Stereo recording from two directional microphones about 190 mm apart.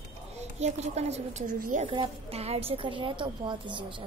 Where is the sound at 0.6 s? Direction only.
35° right (ahead or behind).